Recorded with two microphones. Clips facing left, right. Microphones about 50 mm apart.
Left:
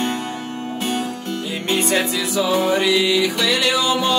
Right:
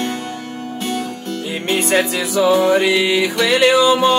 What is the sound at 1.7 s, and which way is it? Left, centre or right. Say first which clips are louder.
Music: right 3 dB; right.